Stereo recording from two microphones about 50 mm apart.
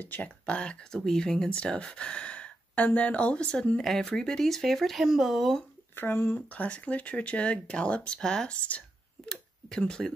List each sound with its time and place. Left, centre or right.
0.0 s speech: left
0.5 s speech: centre
3.8 s speech: centre
5.9 s speech: left
6.5 s speech: left; by 8.5 s centre
8.6 s whispering: left
9.3 s tick-tock: centre